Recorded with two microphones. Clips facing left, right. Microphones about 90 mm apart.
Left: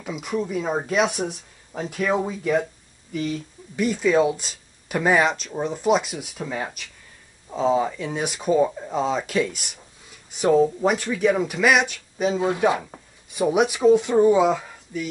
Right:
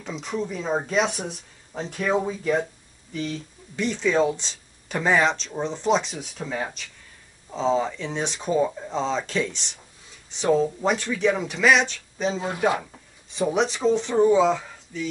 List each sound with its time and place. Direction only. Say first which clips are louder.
0.0 s speech: left 2 dB; 10° left (ahead or behind)
12.4 s speech: left 4 dB; 20° left (ahead or behind)